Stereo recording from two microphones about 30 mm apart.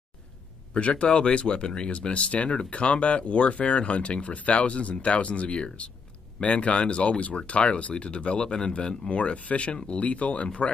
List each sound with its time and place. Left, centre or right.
0.7 s speech: left
1.5 s speech: left
1.9 s speech: left
9.1 s speech: left